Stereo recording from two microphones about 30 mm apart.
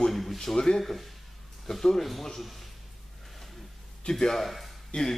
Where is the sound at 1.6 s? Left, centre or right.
Centre.